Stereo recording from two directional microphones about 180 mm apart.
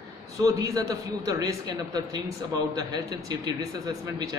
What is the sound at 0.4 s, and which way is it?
Speech, 20° right (ahead or behind).